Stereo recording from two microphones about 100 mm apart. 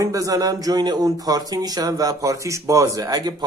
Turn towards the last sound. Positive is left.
turn(degrees=-40)  # may be behind; listen again after turning